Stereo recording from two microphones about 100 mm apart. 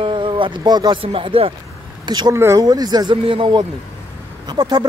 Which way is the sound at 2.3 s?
25° right (ahead or behind).